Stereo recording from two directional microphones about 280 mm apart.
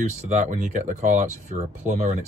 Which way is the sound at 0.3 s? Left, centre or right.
Right.